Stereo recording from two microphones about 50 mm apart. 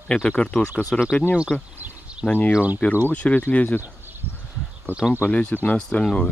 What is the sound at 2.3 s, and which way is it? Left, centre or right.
Speech, left.